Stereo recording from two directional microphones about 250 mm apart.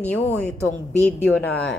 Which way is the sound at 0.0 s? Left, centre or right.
Centre.